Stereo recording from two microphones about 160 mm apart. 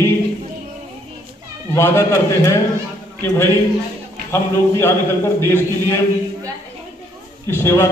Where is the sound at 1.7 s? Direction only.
20° left (ahead or behind).